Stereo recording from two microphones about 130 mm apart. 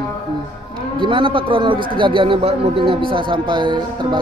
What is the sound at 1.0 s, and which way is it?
Speech, 40° right (ahead or behind).